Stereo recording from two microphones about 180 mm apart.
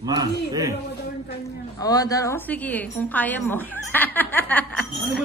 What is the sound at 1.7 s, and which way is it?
A woman's voice, 20° left (ahead or behind).